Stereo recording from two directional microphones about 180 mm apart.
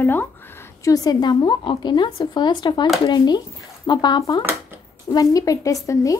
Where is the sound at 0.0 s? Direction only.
10° left (ahead or behind).